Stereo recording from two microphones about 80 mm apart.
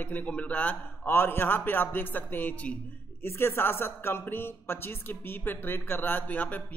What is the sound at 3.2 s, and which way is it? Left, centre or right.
A man's voice, left.